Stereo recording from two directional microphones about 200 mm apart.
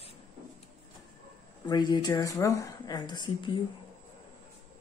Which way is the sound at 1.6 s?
20° left (ahead or behind).